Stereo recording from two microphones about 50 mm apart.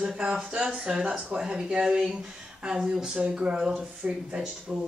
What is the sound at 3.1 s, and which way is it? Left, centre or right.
Speech, right.